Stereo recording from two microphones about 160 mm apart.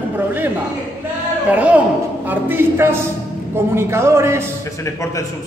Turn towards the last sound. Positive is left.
turn(degrees=20)  # may be behind; listen again after turning